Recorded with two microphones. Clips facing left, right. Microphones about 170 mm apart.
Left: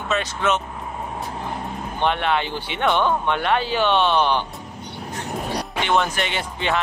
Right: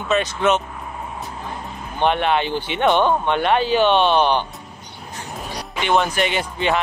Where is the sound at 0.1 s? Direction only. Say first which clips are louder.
Right 4 dB; 20° right (ahead or behind).